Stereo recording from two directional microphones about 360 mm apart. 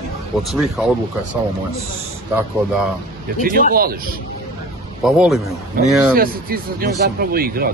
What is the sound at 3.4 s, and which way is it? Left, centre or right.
Speech, right.